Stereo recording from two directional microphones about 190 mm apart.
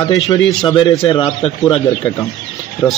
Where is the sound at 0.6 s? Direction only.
30° left (ahead or behind).